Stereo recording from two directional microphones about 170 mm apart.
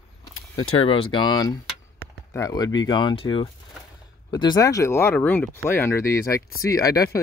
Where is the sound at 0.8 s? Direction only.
30° left (ahead or behind).